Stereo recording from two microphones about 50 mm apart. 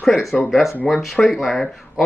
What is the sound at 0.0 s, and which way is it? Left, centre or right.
A man's voice, centre.